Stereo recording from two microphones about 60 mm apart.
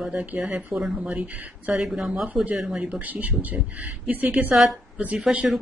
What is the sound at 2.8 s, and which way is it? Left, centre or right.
A woman's voice, right.